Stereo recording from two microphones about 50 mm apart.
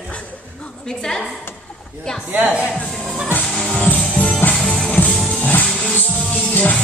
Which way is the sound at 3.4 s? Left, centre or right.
Centre.